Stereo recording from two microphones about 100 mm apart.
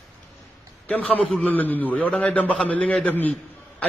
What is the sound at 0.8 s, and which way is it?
A man's voice, 15° left (ahead or behind).